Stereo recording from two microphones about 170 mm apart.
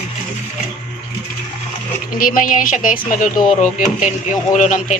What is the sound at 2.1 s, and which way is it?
Speech, 55° left (ahead or behind).